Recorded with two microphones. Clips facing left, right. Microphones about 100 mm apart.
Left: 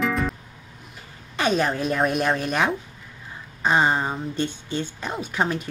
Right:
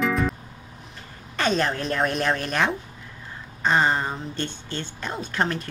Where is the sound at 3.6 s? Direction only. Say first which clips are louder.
Left 1 dB; 15° left (ahead or behind).